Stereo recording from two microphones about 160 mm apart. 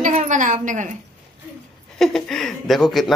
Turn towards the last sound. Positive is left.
turn(degrees=0)  # may be behind; listen again after turning